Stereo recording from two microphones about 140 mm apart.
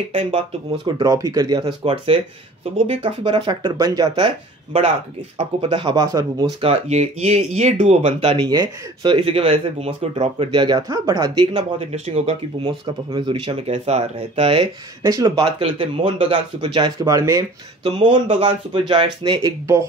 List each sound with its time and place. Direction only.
0.1 s speech: 50° right (ahead or behind)
1.0 s speech: 25° right (ahead or behind)
2.6 s speech: 40° right (ahead or behind)
5.4 s speech: 40° right (ahead or behind)
6.6 s speech: 50° right (ahead or behind)
8.4 s speech: 30° right (ahead or behind); by 10.5 s 45° right (ahead or behind)
10.5 s speech: 30° right (ahead or behind)
11.8 s speech: 50° right (ahead or behind)
12.6 s speech: 35° right (ahead or behind)
15.0 s speech: 30° right (ahead or behind)
17.8 s speech: 40° right (ahead or behind)